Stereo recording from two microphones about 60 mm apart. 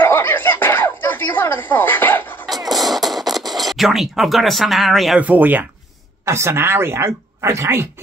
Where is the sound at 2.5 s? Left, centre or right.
Centre.